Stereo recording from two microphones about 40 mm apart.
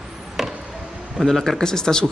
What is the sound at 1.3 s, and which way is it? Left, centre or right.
Speech, centre.